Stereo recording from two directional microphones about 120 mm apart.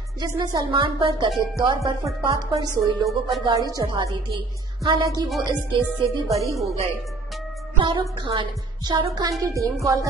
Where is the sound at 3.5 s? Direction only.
30° right (ahead or behind).